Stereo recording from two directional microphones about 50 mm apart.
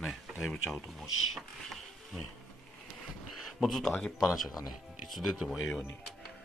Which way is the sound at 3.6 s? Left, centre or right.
Centre.